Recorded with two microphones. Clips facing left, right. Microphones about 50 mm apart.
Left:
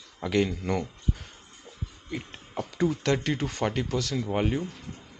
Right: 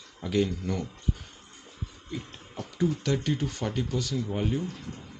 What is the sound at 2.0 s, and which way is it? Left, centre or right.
Speech, left.